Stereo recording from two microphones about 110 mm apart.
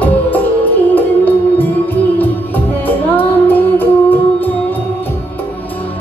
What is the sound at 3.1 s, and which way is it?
Music, 15° left (ahead or behind).